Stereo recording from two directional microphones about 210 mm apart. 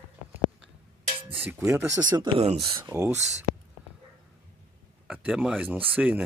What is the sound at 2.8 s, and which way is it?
Speech, 10° right (ahead or behind).